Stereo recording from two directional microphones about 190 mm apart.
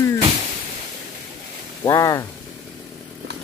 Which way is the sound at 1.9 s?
15° left (ahead or behind).